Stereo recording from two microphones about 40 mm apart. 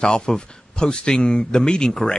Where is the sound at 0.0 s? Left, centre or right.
Centre.